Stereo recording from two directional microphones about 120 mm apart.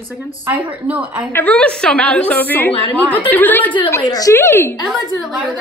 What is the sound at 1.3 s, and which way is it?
A woman's voice, 10° left (ahead or behind).